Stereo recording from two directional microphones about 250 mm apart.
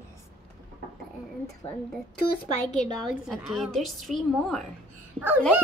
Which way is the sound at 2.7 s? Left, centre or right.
Centre.